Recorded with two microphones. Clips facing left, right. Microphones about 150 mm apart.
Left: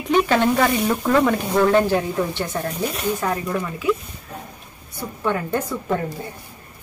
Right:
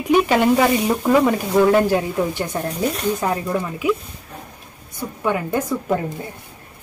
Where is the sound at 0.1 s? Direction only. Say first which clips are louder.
Right 2 dB; 10° right (ahead or behind).